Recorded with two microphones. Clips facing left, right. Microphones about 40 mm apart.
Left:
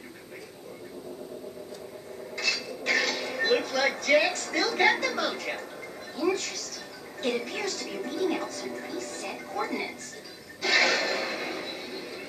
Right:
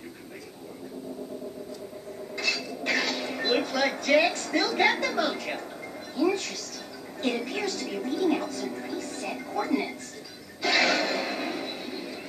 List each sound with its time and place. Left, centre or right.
2.3 s television: centre
3.5 s a woman's voice: centre
6.3 s a woman's voice: centre
7.9 s speech: centre
8.9 s television: centre
9.2 s speech: centre
10.6 s a sound: centre